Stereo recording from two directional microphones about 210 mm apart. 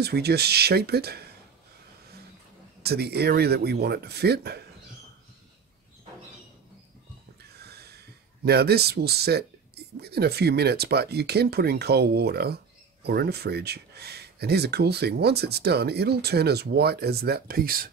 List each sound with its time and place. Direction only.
0.0 s speech: 50° right (ahead or behind)
2.8 s speech: 50° right (ahead or behind)
7.6 s snort: 50° right (ahead or behind)
8.5 s speech: 50° right (ahead or behind)